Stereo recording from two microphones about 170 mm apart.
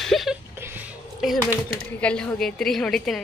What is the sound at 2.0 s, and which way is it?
A woman's voice, 5° left (ahead or behind).